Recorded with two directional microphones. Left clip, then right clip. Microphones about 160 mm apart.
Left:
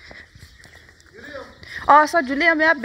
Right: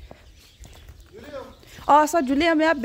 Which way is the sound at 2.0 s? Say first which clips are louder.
Left 3 dB; 30° right (ahead or behind).